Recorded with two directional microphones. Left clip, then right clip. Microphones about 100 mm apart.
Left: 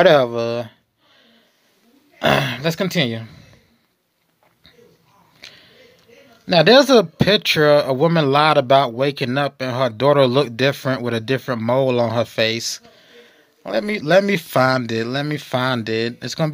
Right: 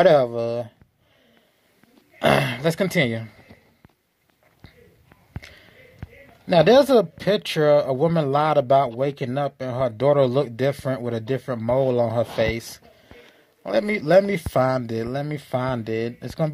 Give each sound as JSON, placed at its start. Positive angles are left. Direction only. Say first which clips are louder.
{"t": 0.0, "sound": "speech", "louder": "left 3 dB", "side_deg": 30}
{"t": 2.1, "sound": "speech", "louder": "left 2 dB", "side_deg": 5}
{"t": 5.4, "sound": "a sound", "louder": "left 7 dB", "side_deg": 0}
{"t": 6.4, "sound": "a man's voice", "louder": "left 3 dB", "side_deg": 15}
{"t": 6.8, "sound": "speech", "louder": "left 4 dB", "side_deg": 30}
{"t": 12.4, "sound": "speech", "louder": "left 5 dB", "side_deg": 15}
{"t": 14.2, "sound": "speech", "louder": "left 4 dB", "side_deg": 25}